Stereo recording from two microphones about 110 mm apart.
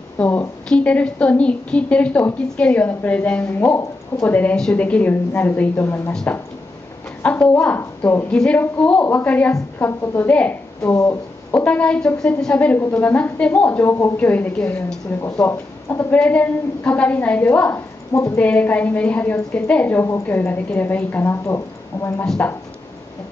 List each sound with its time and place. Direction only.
0.2 s a woman's voice: 15° left (ahead or behind)
7.4 s a woman's voice: 10° left (ahead or behind)
9.8 s a woman's voice: 20° left (ahead or behind)
18.1 s a woman's voice: 25° left (ahead or behind)
18.4 s a woman's voice: 15° left (ahead or behind)